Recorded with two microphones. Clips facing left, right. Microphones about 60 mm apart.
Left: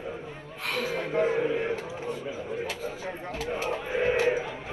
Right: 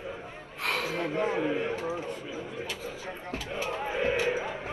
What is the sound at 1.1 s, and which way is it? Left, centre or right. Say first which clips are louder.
Speech: left 5 dB; left.